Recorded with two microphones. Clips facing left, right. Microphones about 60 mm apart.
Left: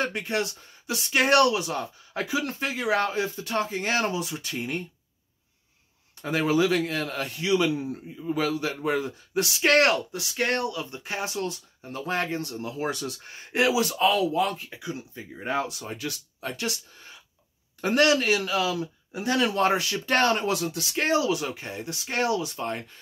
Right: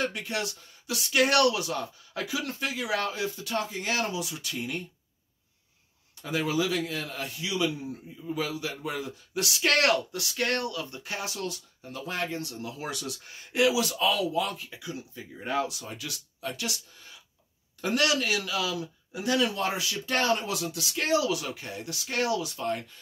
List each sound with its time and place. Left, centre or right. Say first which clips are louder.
0.0 s a man's voice: left 3 dB; left
6.2 s a man's voice: left 5 dB; left
19.4 s a man's voice: left 5 dB; left